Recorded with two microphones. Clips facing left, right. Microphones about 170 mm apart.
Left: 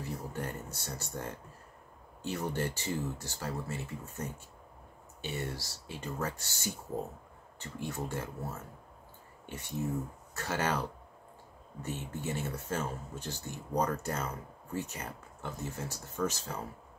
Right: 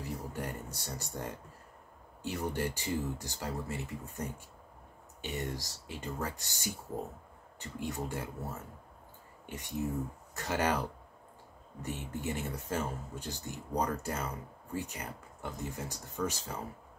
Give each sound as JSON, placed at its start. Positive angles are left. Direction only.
{"t": 0.0, "sound": "speech", "side_deg": -10}
{"t": 9.5, "sound": "speech", "side_deg": -15}